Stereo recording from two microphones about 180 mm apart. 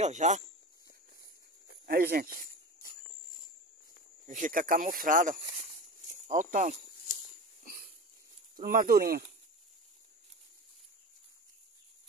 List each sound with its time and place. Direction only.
0.0 s speech: 40° right (ahead or behind)
1.9 s speech: 55° right (ahead or behind)
4.3 s speech: 45° right (ahead or behind)
8.5 s speech: 50° right (ahead or behind)